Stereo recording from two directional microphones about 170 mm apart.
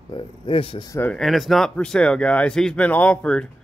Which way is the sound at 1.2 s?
Centre (ahead or behind).